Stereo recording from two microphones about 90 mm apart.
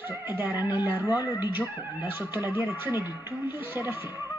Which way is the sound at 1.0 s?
45° left (ahead or behind).